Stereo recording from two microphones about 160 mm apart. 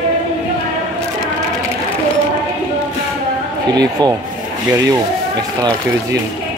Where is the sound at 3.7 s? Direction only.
25° right (ahead or behind).